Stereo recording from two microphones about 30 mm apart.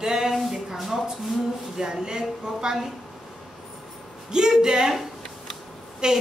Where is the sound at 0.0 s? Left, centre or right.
Right.